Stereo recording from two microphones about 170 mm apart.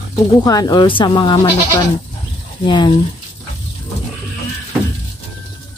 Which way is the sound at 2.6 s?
25° left (ahead or behind).